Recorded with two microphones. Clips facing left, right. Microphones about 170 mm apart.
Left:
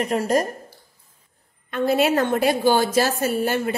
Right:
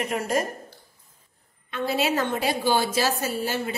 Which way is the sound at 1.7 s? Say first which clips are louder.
Left 6 dB; 50° left (ahead or behind).